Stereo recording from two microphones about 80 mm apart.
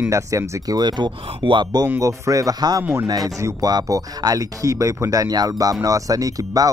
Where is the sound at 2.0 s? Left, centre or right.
Right.